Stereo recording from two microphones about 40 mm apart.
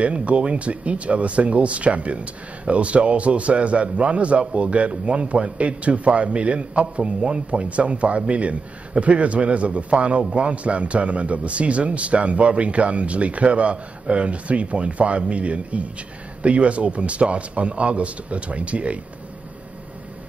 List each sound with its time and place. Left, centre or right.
0.0 s a man's voice: right